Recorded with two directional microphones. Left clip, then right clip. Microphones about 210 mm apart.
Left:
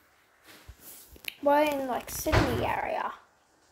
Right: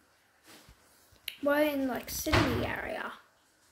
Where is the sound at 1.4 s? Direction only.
10° right (ahead or behind).